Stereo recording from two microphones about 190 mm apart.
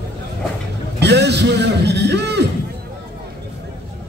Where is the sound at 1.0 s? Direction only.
60° right (ahead or behind).